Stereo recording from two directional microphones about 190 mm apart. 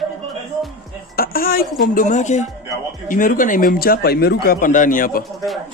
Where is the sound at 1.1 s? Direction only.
50° left (ahead or behind).